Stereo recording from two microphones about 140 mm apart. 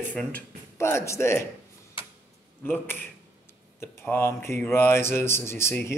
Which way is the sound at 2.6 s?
15° left (ahead or behind).